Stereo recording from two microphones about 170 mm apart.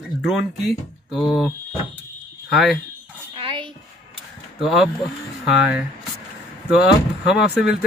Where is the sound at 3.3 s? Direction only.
30° right (ahead or behind).